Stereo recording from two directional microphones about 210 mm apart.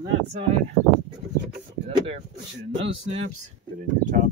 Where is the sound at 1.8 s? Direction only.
30° right (ahead or behind).